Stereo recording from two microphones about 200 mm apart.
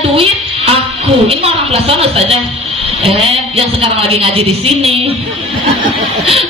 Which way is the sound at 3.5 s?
30° right (ahead or behind).